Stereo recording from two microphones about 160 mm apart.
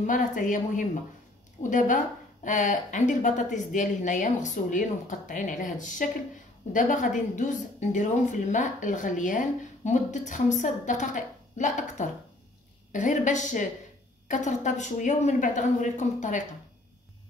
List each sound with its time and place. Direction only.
0.0 s a woman's voice: 55° left (ahead or behind)